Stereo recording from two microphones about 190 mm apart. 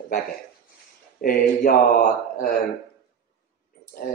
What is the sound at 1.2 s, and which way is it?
Speech, 50° left (ahead or behind).